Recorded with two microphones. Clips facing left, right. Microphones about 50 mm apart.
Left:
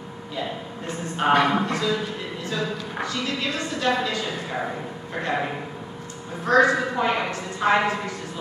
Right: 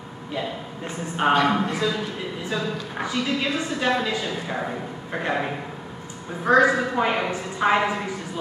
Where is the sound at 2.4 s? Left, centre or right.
Centre.